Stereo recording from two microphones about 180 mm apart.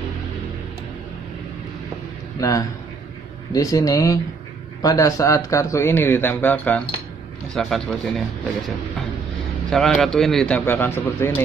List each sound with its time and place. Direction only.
2.4 s a man's voice: 20° left (ahead or behind); by 8.0 s centre (ahead or behind)
9.7 s a man's voice: centre (ahead or behind)